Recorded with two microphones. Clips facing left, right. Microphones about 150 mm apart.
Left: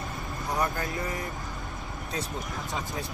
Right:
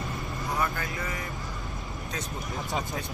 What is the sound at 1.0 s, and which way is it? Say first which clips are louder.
Speech: left 2 dB; 45° left (ahead or behind).